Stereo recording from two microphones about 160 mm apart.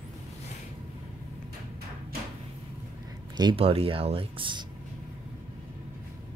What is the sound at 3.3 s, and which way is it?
Speech, 30° right (ahead or behind).